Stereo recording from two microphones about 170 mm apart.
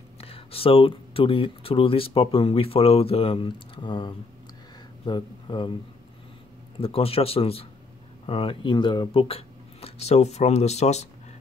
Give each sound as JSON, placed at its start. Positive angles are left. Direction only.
{"t": 0.2, "sound": "speech", "side_deg": 35}
{"t": 6.8, "sound": "speech", "side_deg": 35}